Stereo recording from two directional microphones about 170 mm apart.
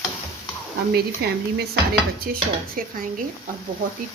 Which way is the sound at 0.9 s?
70° right (ahead or behind).